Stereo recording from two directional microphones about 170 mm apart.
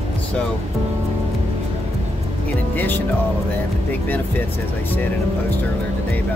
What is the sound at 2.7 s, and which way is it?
Speech, 10° left (ahead or behind).